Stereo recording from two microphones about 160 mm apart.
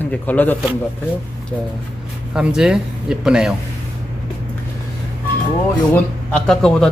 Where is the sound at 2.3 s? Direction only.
5° right (ahead or behind).